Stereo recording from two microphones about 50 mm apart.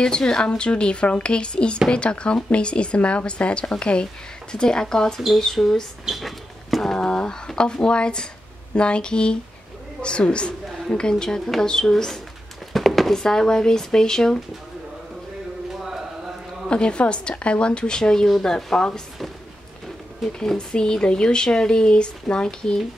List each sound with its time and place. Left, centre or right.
0.0 s a woman's voice: centre
12.7 s a sound: centre
13.2 s speech: centre
16.6 s a woman's voice: centre
20.3 s speech: centre